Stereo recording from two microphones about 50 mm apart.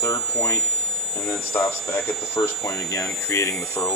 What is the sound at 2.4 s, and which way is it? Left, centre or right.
Speech, left.